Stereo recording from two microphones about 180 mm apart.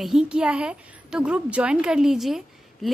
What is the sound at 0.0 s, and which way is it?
A woman's voice, 5° right (ahead or behind).